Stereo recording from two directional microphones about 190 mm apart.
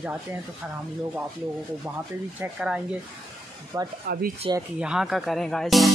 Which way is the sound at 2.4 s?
5° right (ahead or behind).